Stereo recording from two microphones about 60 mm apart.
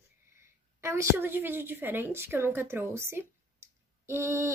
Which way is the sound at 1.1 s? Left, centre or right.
Right.